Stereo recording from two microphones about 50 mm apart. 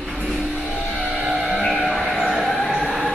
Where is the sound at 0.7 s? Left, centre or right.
Centre.